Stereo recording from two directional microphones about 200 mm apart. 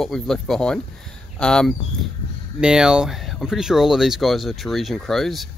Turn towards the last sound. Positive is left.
turn(degrees=0)  # may be behind; listen again after turning